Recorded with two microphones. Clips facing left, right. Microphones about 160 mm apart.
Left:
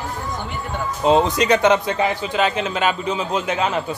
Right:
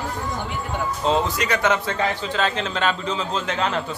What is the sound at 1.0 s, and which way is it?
A man's voice, 20° left (ahead or behind).